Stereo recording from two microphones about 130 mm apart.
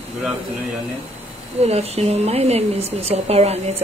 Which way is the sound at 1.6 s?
55° right (ahead or behind).